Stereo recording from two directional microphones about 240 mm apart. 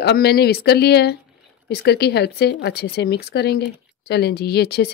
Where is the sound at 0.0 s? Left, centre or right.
Left.